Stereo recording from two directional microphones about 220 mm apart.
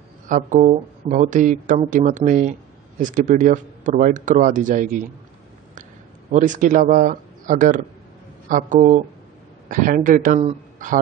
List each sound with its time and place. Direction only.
0.3 s speech: 35° right (ahead or behind)
6.3 s speech: 35° right (ahead or behind)